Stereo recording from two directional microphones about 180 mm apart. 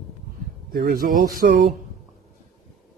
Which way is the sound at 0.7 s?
55° right (ahead or behind).